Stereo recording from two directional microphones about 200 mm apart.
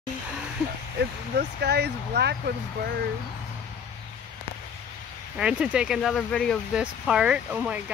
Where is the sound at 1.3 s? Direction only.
55° right (ahead or behind).